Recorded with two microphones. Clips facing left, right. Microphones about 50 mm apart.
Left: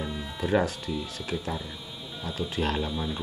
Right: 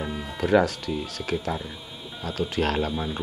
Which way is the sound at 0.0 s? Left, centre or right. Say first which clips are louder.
Right 3 dB; centre.